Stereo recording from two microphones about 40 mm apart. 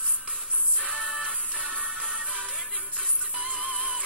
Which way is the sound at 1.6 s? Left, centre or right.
Right.